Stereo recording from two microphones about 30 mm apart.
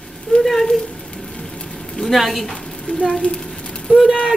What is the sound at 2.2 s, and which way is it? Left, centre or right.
Speech, centre.